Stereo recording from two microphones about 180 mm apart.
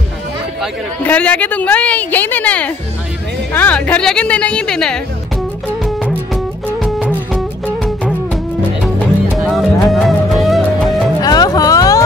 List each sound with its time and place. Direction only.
1.0 s a woman's voice: 10° left (ahead or behind)
6.0 s music: centre (ahead or behind)
9.4 s music: centre (ahead or behind)
11.1 s music: 20° left (ahead or behind)